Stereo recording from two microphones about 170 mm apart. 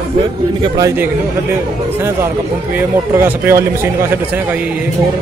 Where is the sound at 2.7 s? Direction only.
10° right (ahead or behind).